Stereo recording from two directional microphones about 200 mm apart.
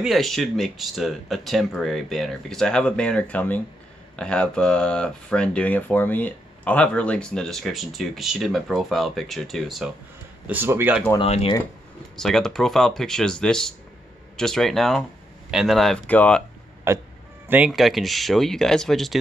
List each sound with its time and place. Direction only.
0.0 s speech: centre (ahead or behind)
11.1 s speech: 30° left (ahead or behind)
12.2 s speech: centre (ahead or behind)
16.9 s speech: 15° right (ahead or behind); by 19.1 s centre (ahead or behind)